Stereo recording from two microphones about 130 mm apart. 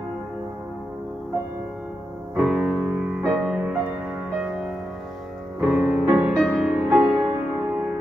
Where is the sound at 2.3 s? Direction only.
5° right (ahead or behind).